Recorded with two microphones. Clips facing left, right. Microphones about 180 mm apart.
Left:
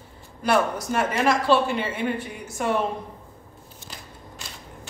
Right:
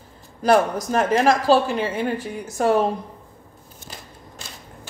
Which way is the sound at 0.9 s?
40° right (ahead or behind).